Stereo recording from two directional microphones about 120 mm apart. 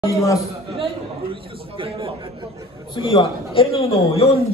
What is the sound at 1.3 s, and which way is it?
Speech, 45° right (ahead or behind).